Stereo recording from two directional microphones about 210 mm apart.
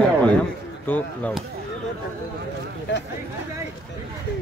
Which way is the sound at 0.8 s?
5° left (ahead or behind).